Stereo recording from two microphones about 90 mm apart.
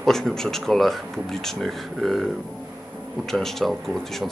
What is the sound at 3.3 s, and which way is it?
Speech, 5° left (ahead or behind).